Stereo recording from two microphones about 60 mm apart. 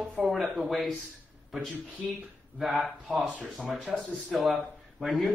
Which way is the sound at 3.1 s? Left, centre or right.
Centre.